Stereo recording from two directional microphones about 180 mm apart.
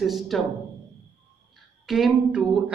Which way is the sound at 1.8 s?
Centre (ahead or behind).